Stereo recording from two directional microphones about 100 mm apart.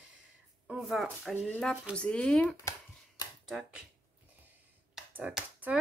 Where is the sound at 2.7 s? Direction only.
35° left (ahead or behind).